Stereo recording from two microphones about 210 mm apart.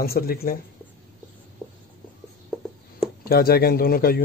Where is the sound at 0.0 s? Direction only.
45° left (ahead or behind).